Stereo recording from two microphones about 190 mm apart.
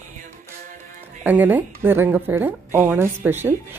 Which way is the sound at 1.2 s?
10° right (ahead or behind).